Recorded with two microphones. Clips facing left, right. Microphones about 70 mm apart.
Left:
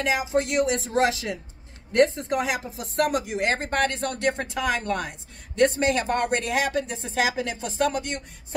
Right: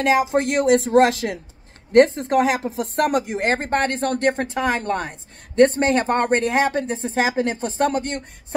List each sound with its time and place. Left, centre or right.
0.0 s speech: right